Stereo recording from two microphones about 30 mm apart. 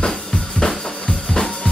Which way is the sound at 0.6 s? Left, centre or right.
Centre.